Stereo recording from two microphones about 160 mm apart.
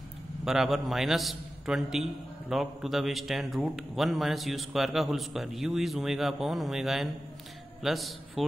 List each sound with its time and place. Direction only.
0.5 s a man's voice: centre (ahead or behind)